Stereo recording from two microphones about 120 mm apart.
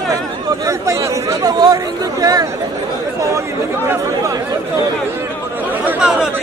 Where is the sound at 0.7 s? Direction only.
25° right (ahead or behind).